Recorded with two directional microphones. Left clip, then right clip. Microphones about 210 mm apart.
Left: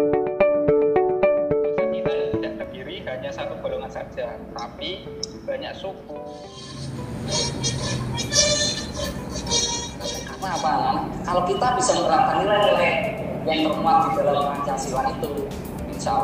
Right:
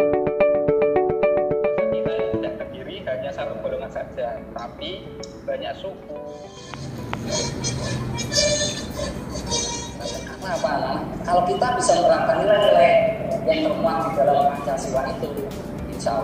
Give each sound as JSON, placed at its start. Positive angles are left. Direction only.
{"t": 0.0, "sound": "music", "side_deg": 0}
{"t": 1.9, "sound": "music", "side_deg": 15}
{"t": 3.1, "sound": "a sound", "side_deg": 15}
{"t": 7.2, "sound": "music", "side_deg": 20}